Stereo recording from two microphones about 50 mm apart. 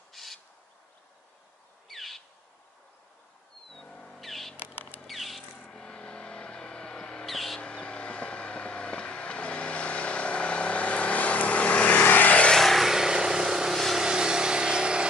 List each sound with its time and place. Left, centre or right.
0.1 s owl: centre
1.9 s owl: centre
3.7 s a sound: centre
5.0 s rodents: centre
5.6 s vehicle: centre
7.2 s a sound: centre
7.6 s vehicle: left
12.5 s vehicle: centre